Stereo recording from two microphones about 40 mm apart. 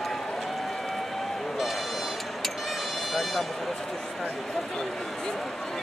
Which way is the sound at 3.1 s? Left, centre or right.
Centre.